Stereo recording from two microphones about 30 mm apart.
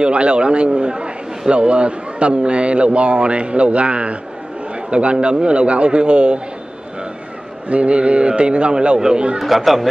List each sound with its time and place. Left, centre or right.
0.0 s a man's voice: right
7.6 s a man's voice: right
9.4 s speech: centre